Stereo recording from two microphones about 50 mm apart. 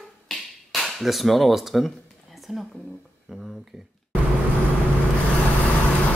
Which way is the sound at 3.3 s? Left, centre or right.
Centre.